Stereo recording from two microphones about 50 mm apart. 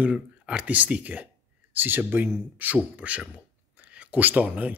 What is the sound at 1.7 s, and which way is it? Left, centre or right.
Speech, right.